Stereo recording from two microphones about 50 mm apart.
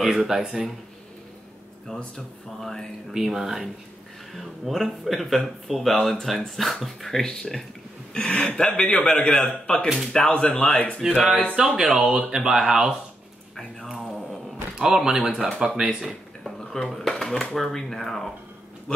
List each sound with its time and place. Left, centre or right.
0.0 s speech: centre
2.6 s a man's voice: centre
3.1 s speech: centre; by 9.0 s left
9.0 s a man's voice: centre
11.0 s speech: centre
12.0 s speech: right
12.3 s speech: centre
13.8 s music: centre
14.8 s speech: centre
16.7 s speech: centre
17.1 s a sound: centre
17.6 s speech: centre